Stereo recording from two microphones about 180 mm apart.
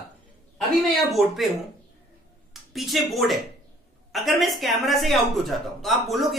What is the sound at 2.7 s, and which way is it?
Speech, centre (ahead or behind).